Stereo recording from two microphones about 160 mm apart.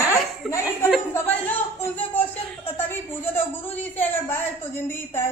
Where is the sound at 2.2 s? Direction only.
10° left (ahead or behind).